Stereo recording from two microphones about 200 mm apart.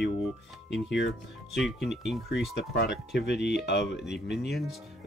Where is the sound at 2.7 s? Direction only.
55° left (ahead or behind).